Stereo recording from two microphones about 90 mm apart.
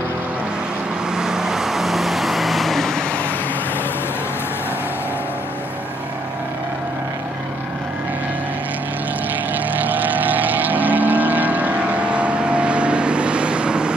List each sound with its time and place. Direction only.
1.1 s vehicle: 5° right (ahead or behind)
9.5 s vehicle: 20° right (ahead or behind)